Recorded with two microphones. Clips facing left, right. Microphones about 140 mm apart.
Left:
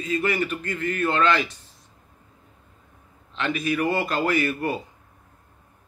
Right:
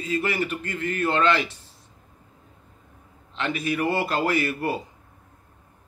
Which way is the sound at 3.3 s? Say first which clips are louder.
Left 1 dB; 30° right (ahead or behind).